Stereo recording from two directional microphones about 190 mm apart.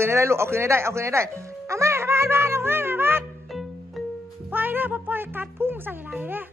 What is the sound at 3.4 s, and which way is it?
Music, centre (ahead or behind).